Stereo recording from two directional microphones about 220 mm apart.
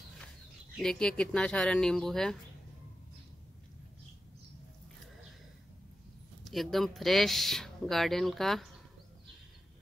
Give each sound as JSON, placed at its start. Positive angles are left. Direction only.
{"t": 0.7, "sound": "speech", "side_deg": 5}
{"t": 6.4, "sound": "speech", "side_deg": 0}